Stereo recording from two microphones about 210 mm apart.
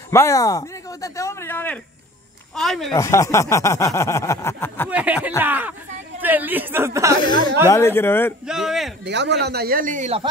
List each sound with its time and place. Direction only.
0.1 s a man's voice: 15° left (ahead or behind)
2.9 s speech: 15° left (ahead or behind)
4.8 s a woman's voice: 5° right (ahead or behind)
7.2 s speech: 20° left (ahead or behind)
8.5 s a man's voice: centre (ahead or behind)
9.0 s speech: 55° right (ahead or behind); by 10.2 s 35° right (ahead or behind)